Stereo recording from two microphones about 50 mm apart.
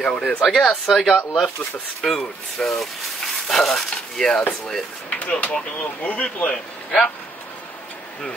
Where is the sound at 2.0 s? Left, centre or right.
Centre.